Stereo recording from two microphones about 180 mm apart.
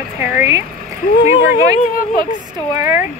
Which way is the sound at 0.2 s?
10° right (ahead or behind).